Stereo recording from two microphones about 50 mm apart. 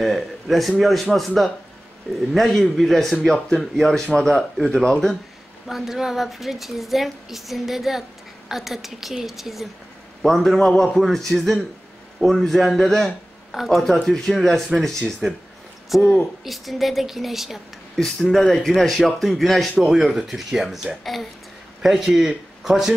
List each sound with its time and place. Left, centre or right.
0.0 s a woman's voice: centre
5.7 s a woman's voice: centre
15.9 s a woman's voice: centre
19.8 s a woman's voice: centre
22.1 s speech: right
22.6 s speech: centre